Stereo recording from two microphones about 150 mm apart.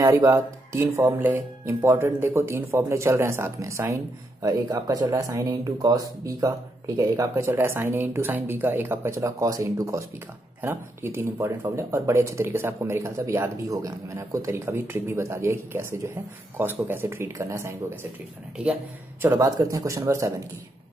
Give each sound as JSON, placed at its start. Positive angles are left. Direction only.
{"t": 0.0, "sound": "speech", "side_deg": -20}
{"t": 19.3, "sound": "speech", "side_deg": -20}